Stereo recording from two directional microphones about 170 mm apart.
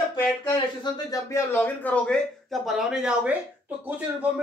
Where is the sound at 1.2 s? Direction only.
15° left (ahead or behind).